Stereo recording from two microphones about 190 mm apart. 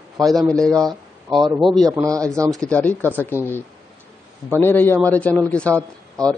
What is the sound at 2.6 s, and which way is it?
Speech, 5° left (ahead or behind).